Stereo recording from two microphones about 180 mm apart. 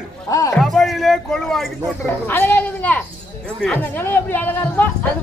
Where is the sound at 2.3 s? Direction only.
10° left (ahead or behind).